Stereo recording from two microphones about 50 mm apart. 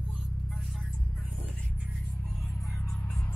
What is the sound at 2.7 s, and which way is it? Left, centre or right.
Music, left.